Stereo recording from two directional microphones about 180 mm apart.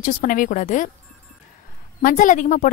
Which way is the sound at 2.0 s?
45° left (ahead or behind).